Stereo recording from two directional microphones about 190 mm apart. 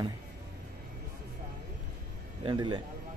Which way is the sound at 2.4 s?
25° right (ahead or behind).